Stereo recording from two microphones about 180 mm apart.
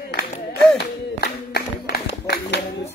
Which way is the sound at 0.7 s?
60° left (ahead or behind).